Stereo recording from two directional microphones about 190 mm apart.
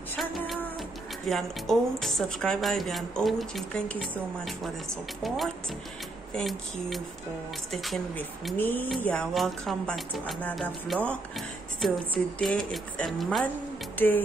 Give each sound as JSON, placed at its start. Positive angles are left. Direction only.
{"t": 0.1, "sound": "a sound", "side_deg": 0}
{"t": 1.3, "sound": "speech", "side_deg": 0}
{"t": 13.9, "sound": "music", "side_deg": 10}